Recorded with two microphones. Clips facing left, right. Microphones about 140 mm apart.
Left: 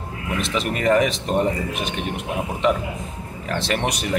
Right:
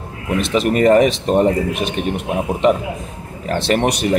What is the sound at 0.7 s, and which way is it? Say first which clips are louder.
Speech: right 6 dB; 40° right (ahead or behind).